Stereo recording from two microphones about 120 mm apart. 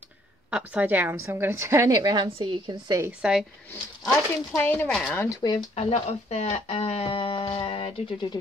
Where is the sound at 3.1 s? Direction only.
5° right (ahead or behind).